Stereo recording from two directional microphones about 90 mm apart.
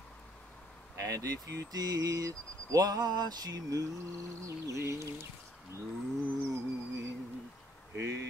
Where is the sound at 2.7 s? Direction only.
45° right (ahead or behind).